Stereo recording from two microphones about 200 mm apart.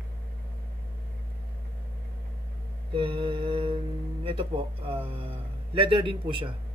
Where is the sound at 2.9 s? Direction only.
25° right (ahead or behind).